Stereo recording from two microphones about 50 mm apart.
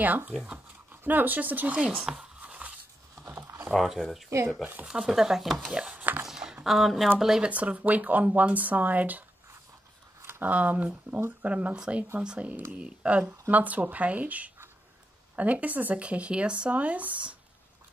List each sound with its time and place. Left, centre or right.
0.0 s speech: right
2.0 s speech: centre
2.4 s a sound: right
3.3 s a sound: right
3.7 s speech: centre
5.7 s speech: centre
6.2 s a sound: centre
6.6 s speech: centre
7.4 s speech: right
10.4 s speech: right